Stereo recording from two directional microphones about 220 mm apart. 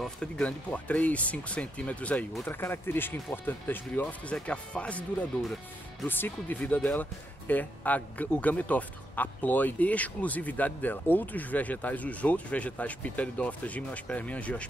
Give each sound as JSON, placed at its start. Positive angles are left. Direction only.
{"t": 0.0, "sound": "speech", "side_deg": 5}